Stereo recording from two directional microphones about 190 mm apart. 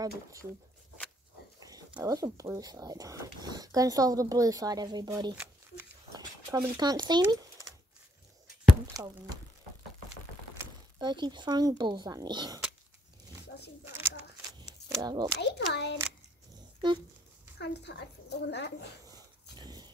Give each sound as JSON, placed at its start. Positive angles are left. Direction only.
{"t": 0.0, "sound": "speech", "side_deg": -15}
{"t": 2.0, "sound": "speech", "side_deg": -20}
{"t": 8.9, "sound": "speech", "side_deg": -20}
{"t": 11.0, "sound": "speech", "side_deg": -25}
{"t": 13.8, "sound": "a sound", "side_deg": -15}
{"t": 15.3, "sound": "a woman's voice", "side_deg": 60}
{"t": 17.6, "sound": "a woman's voice", "side_deg": 60}
{"t": 19.5, "sound": "dog", "side_deg": -20}